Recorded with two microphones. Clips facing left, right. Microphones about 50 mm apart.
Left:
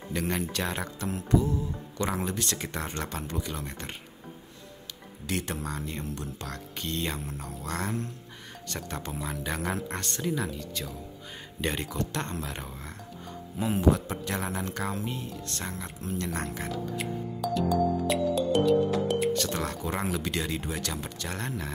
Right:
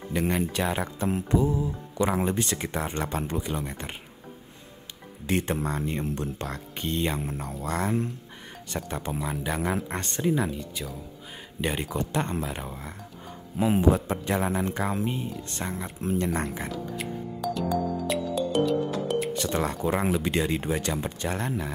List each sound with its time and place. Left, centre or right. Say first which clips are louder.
0.1 s speech: right 4 dB; centre
5.2 s speech: right 6 dB; right
6.4 s speech: right 4 dB; right
9.9 s speech: right 5 dB; right
13.7 s speech: even; right
16.0 s speech: right 6 dB; right
16.6 s speech: even; centre
17.6 s music: left 3 dB; centre
19.3 s speech: right 3 dB; centre
21.4 s speech: right 4 dB; centre